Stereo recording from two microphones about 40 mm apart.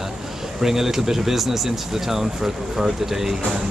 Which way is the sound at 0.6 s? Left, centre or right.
Centre.